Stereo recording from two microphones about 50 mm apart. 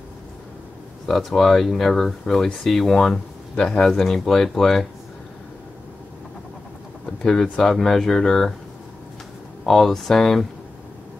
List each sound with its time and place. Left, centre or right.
1.0 s speech: centre
3.5 s speech: centre
7.5 s speech: centre
9.7 s speech: centre